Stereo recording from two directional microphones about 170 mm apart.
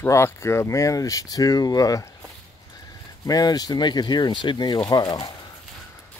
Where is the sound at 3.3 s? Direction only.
20° left (ahead or behind).